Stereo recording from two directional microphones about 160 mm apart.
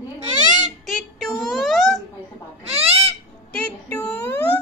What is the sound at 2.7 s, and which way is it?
Owl, 40° right (ahead or behind).